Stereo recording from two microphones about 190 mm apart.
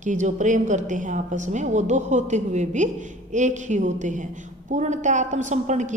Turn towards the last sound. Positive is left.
turn(degrees=-40)  # may be behind; listen again after turning